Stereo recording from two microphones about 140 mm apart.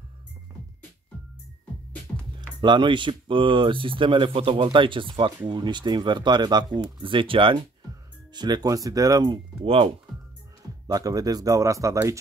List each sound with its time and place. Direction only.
2.6 s speech: 35° right (ahead or behind)
10.9 s speech: 25° right (ahead or behind)